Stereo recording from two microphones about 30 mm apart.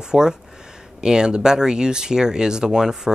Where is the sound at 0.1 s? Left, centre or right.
Right.